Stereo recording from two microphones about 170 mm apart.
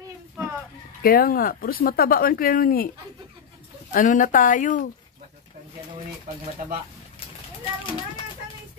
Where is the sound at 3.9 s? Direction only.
50° left (ahead or behind).